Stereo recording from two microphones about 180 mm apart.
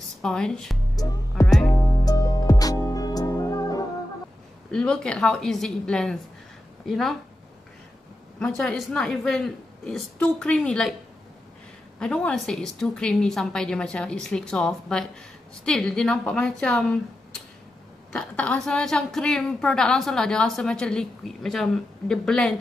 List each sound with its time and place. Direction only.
0.2 s a woman's voice: 5° left (ahead or behind)
1.0 s music: 20° left (ahead or behind)
4.6 s a woman's voice: 5° left (ahead or behind)
8.4 s a woman's voice: 5° left (ahead or behind)
12.0 s a woman's voice: 5° left (ahead or behind)